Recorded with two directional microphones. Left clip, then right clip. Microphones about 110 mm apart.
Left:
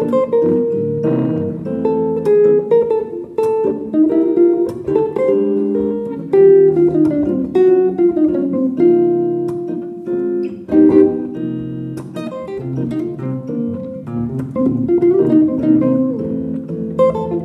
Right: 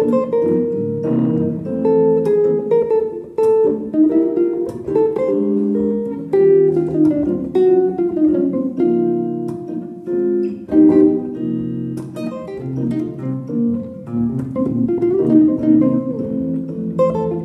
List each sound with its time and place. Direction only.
0.0 s music: 30° right (ahead or behind)
4.1 s music: 40° right (ahead or behind)
14.1 s music: 30° right (ahead or behind)
16.9 s music: 35° right (ahead or behind)